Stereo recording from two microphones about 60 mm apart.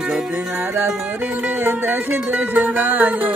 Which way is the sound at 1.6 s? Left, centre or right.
Right.